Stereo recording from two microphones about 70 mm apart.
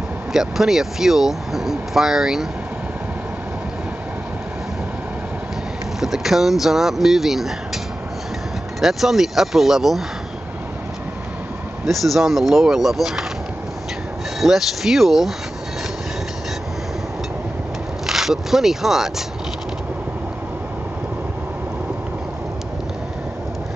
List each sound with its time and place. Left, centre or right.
0.3 s speech: centre
5.9 s speech: centre
8.8 s speech: centre
11.8 s speech: centre
14.4 s speech: centre
18.0 s speech: centre